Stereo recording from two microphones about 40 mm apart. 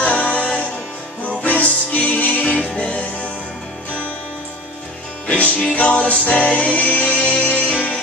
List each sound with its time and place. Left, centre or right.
0.0 s music: left
2.4 s music: left
5.2 s music: left